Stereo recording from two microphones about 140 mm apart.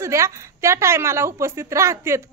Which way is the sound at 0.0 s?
20° right (ahead or behind).